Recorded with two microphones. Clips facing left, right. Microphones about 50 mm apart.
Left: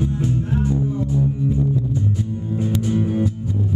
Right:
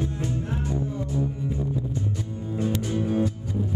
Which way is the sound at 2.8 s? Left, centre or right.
Centre.